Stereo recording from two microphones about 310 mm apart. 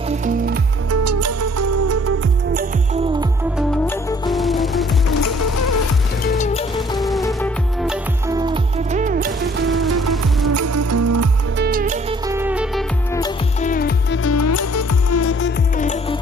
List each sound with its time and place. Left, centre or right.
1.0 s music: right
3.5 s music: centre
5.2 s music: left
6.2 s music: left
7.0 s music: centre
8.9 s music: right
10.5 s music: right
11.5 s music: right
12.3 s music: centre
13.6 s music: left
14.2 s music: left
15.8 s music: left